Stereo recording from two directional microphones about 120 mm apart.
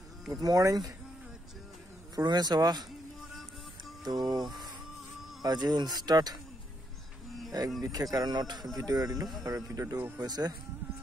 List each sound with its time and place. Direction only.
0.3 s speech: 30° right (ahead or behind)
2.1 s speech: 35° right (ahead or behind)
4.0 s music: 35° right (ahead or behind)
5.4 s speech: 35° right (ahead or behind)
7.8 s speech: 30° right (ahead or behind)
9.9 s speech: 15° right (ahead or behind)
10.2 s speech: 35° right (ahead or behind)